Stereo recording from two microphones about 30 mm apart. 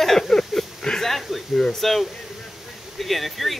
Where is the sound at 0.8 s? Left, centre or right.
Centre.